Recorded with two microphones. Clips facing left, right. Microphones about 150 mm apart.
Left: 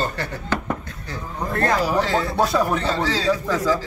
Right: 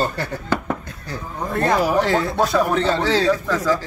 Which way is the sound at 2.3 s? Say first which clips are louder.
Right 2 dB; 5° left (ahead or behind).